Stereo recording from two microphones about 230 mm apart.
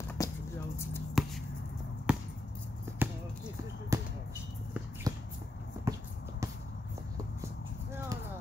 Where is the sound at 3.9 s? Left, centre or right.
Centre.